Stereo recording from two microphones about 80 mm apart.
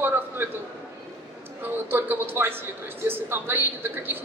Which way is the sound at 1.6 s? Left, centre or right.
Right.